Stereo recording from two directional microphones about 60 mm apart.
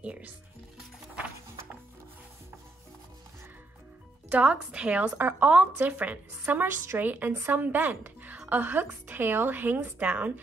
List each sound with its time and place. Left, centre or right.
0.0 s a woman's voice: right
4.3 s a woman's voice: centre
5.1 s a woman's voice: right